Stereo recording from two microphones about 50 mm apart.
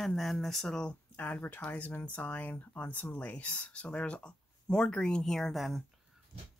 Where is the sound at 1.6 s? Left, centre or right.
Left; by 5.6 s centre.